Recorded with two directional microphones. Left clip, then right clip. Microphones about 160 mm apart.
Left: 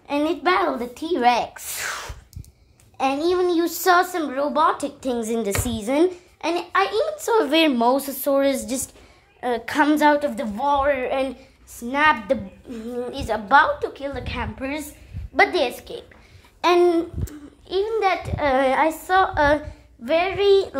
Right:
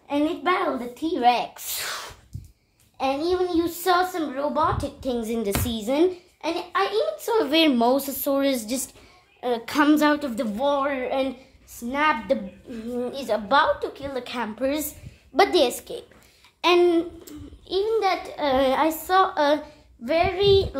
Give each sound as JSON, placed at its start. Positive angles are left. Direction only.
{"t": 0.1, "sound": "a sound", "side_deg": 35}
{"t": 1.5, "sound": "speech", "side_deg": 0}
{"t": 3.0, "sound": "a woman's voice", "side_deg": 25}
{"t": 6.4, "sound": "a child's voice", "side_deg": 30}
{"t": 7.3, "sound": "a woman's voice", "side_deg": 10}
{"t": 7.7, "sound": "a woman's voice", "side_deg": 0}
{"t": 14.1, "sound": "a woman's voice", "side_deg": -15}
{"t": 16.6, "sound": "a woman's voice", "side_deg": 10}